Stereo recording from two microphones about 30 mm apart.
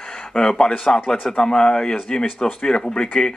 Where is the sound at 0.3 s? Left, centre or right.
Left.